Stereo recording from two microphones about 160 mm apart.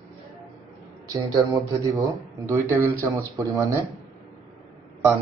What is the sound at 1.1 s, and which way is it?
Speech, 20° right (ahead or behind).